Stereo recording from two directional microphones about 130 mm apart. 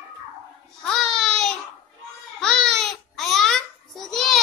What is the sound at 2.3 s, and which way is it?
Babbling, 5° left (ahead or behind).